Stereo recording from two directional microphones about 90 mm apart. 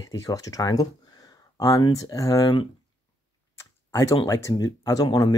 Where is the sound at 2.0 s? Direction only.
40° left (ahead or behind).